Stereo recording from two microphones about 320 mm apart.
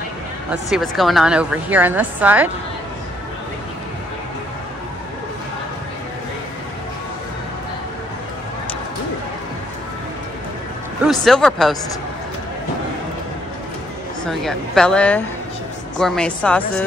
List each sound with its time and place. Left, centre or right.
0.5 s a woman's voice: centre
11.1 s a woman's voice: centre
14.2 s a woman's voice: centre